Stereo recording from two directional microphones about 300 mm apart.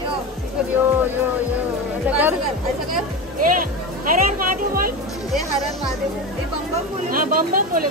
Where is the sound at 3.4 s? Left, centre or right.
Right.